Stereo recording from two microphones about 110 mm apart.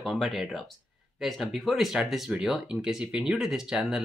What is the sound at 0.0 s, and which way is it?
Speech, centre (ahead or behind).